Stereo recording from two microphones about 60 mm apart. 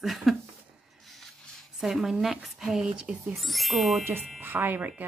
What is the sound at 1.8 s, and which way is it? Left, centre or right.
Speech, centre.